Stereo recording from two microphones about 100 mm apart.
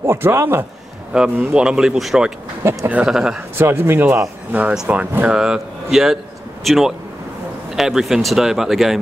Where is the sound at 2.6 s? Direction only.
25° right (ahead or behind).